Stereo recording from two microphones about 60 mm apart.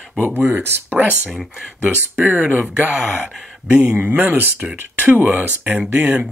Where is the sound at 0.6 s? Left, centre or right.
Right.